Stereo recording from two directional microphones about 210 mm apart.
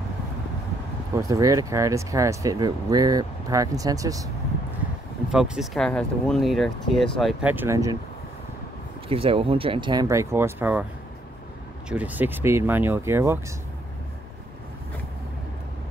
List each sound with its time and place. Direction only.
1.1 s speech: 15° right (ahead or behind)
5.3 s speech: 5° right (ahead or behind)
9.1 s speech: 25° right (ahead or behind); by 10.9 s 10° right (ahead or behind)
11.9 s speech: 5° right (ahead or behind)